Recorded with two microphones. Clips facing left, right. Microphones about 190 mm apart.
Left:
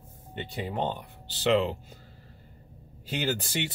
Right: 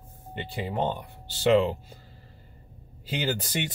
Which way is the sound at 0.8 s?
45° right (ahead or behind).